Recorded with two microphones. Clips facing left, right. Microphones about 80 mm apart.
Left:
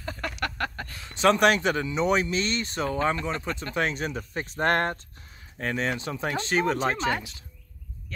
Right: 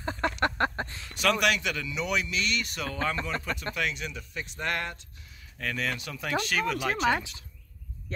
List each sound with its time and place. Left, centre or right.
0.0 s a sound: right
1.0 s speech: left
5.6 s speech: left